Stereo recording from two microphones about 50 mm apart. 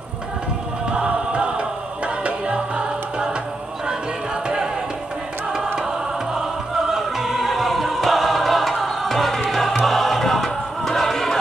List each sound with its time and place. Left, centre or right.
0.9 s music: right
6.9 s music: centre